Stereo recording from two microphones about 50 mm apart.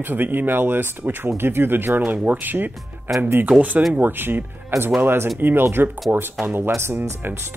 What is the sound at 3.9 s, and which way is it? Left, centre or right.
Speech, right.